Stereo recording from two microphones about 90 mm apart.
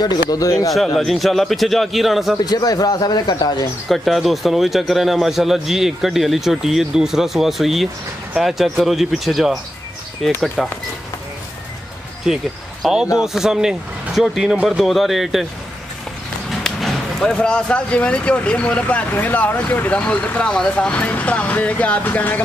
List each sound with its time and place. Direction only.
0.0 s speech: 45° left (ahead or behind)
0.7 s a man's voice: centre (ahead or behind)
2.3 s a man's voice: 45° left (ahead or behind)
3.9 s a man's voice: centre (ahead or behind)
12.8 s a man's voice: 10° right (ahead or behind)
16.4 s speech: 5° left (ahead or behind); by 22.4 s 20° left (ahead or behind)